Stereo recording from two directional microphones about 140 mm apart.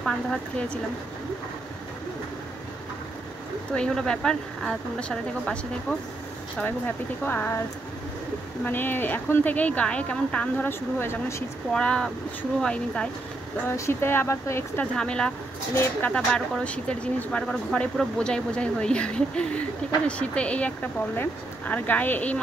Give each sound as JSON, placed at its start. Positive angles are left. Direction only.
{"t": 0.0, "sound": "speech", "side_deg": 5}
{"t": 3.7, "sound": "speech", "side_deg": 5}
{"t": 7.2, "sound": "speech", "side_deg": 15}
{"t": 8.6, "sound": "speech", "side_deg": 15}
{"t": 11.7, "sound": "speech", "side_deg": 5}
{"t": 13.7, "sound": "speech", "side_deg": 20}
{"t": 15.0, "sound": "speech", "side_deg": 5}